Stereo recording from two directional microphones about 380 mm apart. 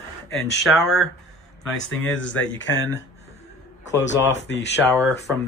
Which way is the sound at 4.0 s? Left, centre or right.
Left.